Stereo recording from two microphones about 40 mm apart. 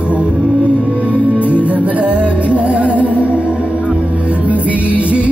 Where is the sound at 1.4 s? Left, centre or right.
Right.